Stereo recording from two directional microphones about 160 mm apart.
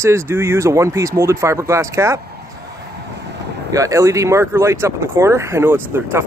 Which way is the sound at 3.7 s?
20° right (ahead or behind).